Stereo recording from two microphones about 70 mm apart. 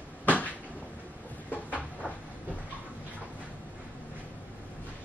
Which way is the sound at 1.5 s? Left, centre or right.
Left.